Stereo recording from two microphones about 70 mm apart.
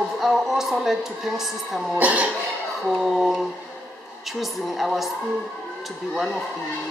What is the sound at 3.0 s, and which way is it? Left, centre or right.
Speech, centre.